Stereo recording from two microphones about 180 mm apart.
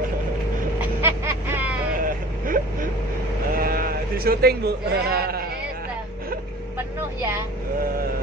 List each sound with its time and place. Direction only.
0.7 s vehicle: 10° right (ahead or behind)
2.0 s vehicle: 50° right (ahead or behind)
3.5 s speech: 55° right (ahead or behind)
7.2 s speech: 15° right (ahead or behind)